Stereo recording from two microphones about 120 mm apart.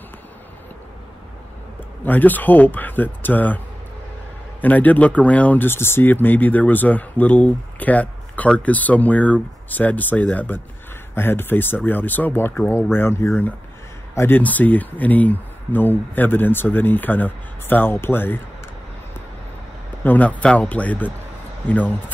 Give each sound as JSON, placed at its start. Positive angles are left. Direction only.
{"t": 2.0, "sound": "a man's voice", "side_deg": 15}
{"t": 20.0, "sound": "a man's voice", "side_deg": 15}